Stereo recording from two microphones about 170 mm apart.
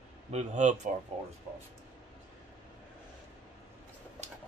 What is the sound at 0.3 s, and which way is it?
Speech, 40° right (ahead or behind).